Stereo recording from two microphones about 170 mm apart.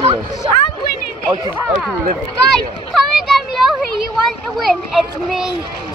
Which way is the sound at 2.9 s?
Centre (ahead or behind).